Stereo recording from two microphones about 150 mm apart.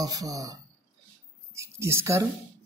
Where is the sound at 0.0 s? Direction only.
25° right (ahead or behind).